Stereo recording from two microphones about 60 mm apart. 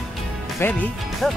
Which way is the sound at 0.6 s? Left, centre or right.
Left.